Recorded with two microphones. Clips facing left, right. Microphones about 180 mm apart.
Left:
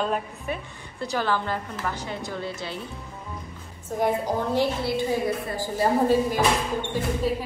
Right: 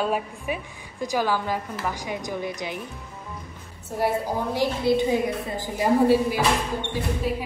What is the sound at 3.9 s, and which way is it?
A woman's voice, 10° right (ahead or behind).